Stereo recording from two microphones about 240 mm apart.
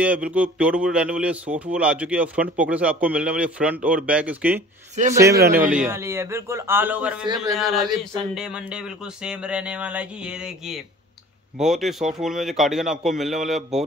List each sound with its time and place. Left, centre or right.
0.0 s a man's voice: centre